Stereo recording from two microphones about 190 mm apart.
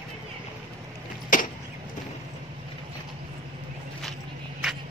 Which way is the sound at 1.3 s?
45° left (ahead or behind).